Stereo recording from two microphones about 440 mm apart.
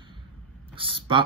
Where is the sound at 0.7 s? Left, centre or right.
Centre.